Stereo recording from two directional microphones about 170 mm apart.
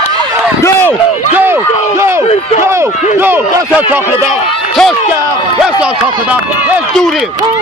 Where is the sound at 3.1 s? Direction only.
15° right (ahead or behind).